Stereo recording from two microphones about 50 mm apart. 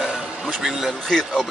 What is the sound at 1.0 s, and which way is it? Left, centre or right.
Speech, centre.